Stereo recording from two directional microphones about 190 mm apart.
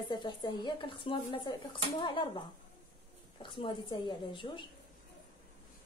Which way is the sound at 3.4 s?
25° left (ahead or behind).